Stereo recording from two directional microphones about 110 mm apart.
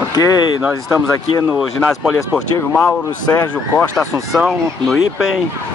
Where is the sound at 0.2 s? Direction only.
35° left (ahead or behind).